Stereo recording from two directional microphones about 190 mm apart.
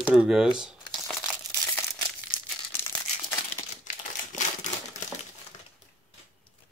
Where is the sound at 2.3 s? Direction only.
10° left (ahead or behind).